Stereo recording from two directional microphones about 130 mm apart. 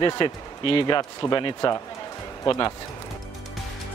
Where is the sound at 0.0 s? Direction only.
40° left (ahead or behind).